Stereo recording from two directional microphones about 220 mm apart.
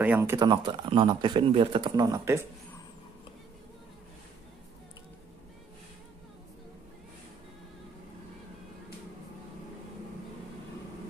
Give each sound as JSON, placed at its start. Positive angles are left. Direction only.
{"t": 0.0, "sound": "speech", "side_deg": -10}